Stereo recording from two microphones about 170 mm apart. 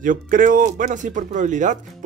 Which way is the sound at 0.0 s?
50° right (ahead or behind).